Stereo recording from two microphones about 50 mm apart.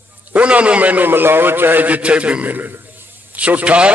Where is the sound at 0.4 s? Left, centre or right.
Right.